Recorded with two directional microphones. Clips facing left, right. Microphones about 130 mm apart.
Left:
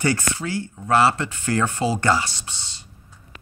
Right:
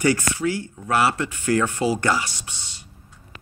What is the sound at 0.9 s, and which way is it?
Speech, 30° left (ahead or behind).